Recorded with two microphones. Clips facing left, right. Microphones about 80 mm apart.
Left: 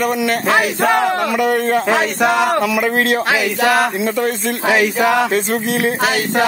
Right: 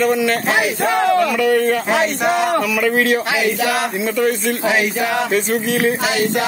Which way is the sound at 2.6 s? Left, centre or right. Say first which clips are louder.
Left 1 dB; left.